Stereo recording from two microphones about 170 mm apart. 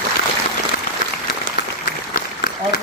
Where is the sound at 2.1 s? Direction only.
55° left (ahead or behind).